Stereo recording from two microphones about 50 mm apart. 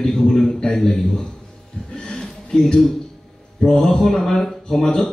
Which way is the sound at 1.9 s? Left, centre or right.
Centre.